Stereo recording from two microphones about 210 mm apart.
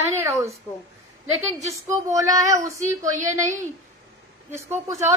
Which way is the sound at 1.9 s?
15° right (ahead or behind).